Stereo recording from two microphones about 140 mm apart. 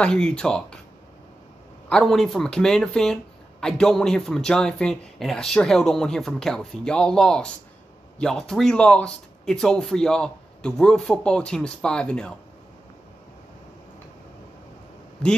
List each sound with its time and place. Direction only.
0.0 s speech: 5° left (ahead or behind)
1.9 s speech: 5° left (ahead or behind)